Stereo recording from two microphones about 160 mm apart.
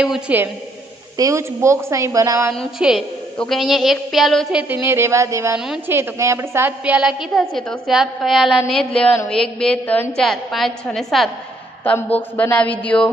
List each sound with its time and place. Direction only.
0.0 s a woman's voice: 10° right (ahead or behind)
1.1 s a woman's voice: 20° right (ahead or behind)
2.5 s a woman's voice: centre (ahead or behind)